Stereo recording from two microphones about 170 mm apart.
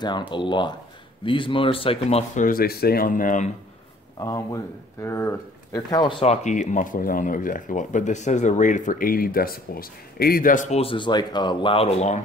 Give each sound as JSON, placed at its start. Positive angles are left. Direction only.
{"t": 0.3, "sound": "speech", "side_deg": 30}
{"t": 2.4, "sound": "speech", "side_deg": 60}
{"t": 4.2, "sound": "speech", "side_deg": 20}